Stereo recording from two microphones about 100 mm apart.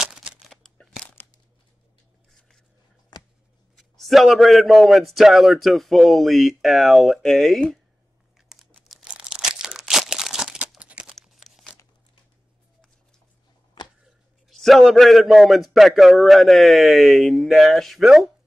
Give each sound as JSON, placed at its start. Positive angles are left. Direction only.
{"t": 0.0, "sound": "a sound", "side_deg": -10}
{"t": 0.5, "sound": "a sound", "side_deg": 5}
{"t": 3.7, "sound": "a man's voice", "side_deg": 0}
{"t": 8.4, "sound": "crumpling", "side_deg": -5}
{"t": 8.8, "sound": "crunch", "side_deg": -5}
{"t": 11.1, "sound": "crumpling", "side_deg": 0}
{"t": 13.8, "sound": "tick-tock", "side_deg": 45}
{"t": 14.5, "sound": "a man's voice", "side_deg": 0}